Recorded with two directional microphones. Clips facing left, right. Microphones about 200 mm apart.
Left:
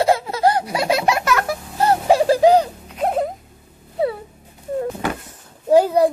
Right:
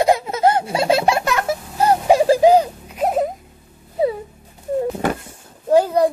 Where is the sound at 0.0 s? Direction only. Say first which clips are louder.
Right 1 dB; 20° right (ahead or behind).